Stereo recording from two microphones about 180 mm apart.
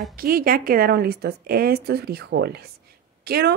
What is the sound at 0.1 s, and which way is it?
Speech, 55° right (ahead or behind).